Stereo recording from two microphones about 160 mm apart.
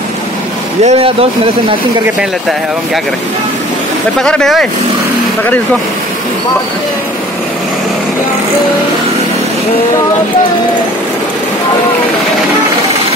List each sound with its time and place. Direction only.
0.8 s speech: 35° right (ahead or behind)
4.2 s speech: 5° left (ahead or behind)